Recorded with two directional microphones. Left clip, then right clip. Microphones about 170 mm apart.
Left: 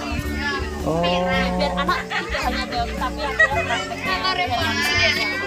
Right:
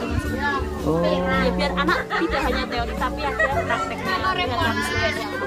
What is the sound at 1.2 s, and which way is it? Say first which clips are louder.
Speech: left 1 dB; 35° right (ahead or behind).